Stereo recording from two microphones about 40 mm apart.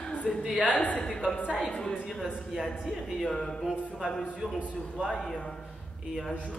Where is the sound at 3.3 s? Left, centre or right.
Centre.